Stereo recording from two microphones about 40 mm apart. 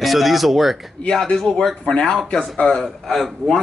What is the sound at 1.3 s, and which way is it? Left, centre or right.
A man's voice, centre.